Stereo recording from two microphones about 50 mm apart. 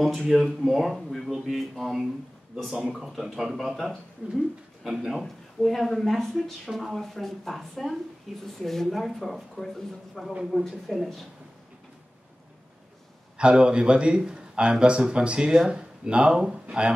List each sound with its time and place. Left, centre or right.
0.0 s speech: centre
13.4 s a man's voice: centre